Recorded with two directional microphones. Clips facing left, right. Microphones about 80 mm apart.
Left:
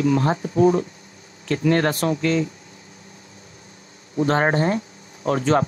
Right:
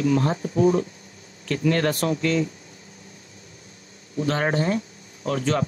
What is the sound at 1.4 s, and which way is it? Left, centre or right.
Speech, left.